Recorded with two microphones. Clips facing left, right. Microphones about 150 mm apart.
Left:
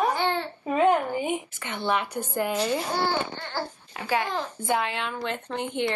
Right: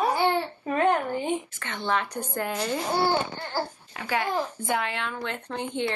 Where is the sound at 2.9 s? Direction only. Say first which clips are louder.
Right 2 dB; 15° right (ahead or behind).